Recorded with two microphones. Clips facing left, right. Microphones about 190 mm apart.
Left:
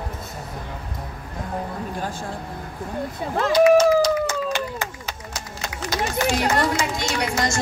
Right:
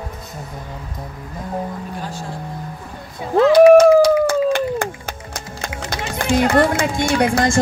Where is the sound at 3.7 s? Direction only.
55° right (ahead or behind).